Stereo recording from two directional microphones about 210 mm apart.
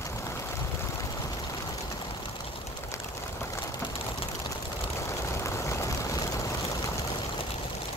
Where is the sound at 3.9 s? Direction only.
25° left (ahead or behind).